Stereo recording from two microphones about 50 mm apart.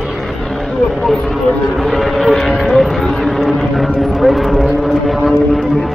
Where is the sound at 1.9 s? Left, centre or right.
Centre.